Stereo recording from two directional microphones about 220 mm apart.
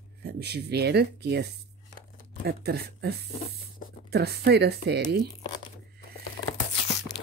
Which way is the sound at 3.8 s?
40° left (ahead or behind).